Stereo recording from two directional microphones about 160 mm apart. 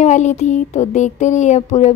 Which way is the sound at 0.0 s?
45° left (ahead or behind).